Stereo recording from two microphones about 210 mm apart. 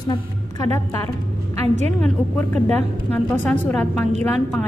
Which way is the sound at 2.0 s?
5° left (ahead or behind).